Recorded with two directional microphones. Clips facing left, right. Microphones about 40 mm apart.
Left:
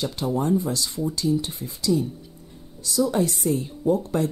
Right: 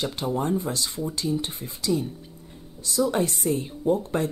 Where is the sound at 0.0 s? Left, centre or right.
Right.